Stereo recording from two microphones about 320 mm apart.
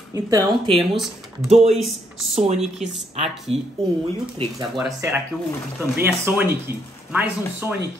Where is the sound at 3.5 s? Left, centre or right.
Centre.